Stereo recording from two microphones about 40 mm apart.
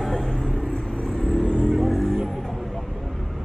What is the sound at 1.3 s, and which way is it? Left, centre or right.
Vehicle, left.